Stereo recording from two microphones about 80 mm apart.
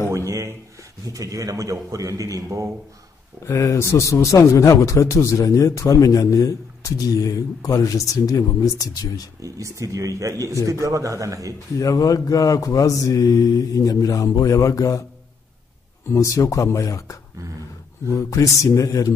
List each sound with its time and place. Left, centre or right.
0.1 s a sound: right
1.0 s a man's voice: right
3.4 s speech: left
9.4 s a man's voice: right
11.7 s speech: left
16.1 s speech: left